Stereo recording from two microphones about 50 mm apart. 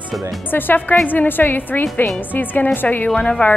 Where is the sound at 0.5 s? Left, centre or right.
Left.